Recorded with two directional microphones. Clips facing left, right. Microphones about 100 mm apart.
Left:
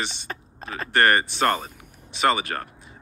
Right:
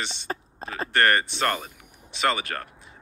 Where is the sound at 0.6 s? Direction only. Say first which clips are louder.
Left 1 dB; 30° right (ahead or behind).